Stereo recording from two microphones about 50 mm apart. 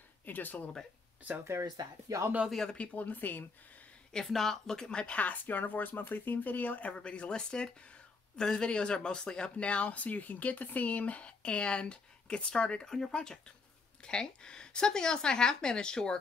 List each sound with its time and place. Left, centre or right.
0.2 s speech: left
1.4 s speech: right
2.7 s speech: left
4.1 s speech: centre
5.2 s speech: left; by 16.2 s centre